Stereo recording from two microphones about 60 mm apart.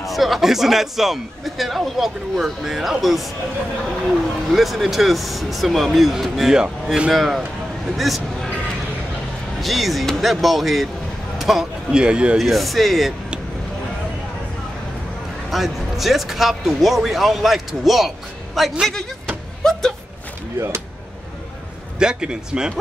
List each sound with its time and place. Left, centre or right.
0.0 s speech: centre
4.5 s speech: centre
9.6 s speech: centre
11.3 s a sound: centre
12.0 s speech: centre
12.4 s speech: centre
15.5 s speech: centre
19.6 s a sound: centre
20.5 s speech: right
21.9 s speech: centre